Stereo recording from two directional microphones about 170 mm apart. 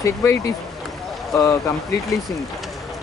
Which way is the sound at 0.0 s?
15° left (ahead or behind).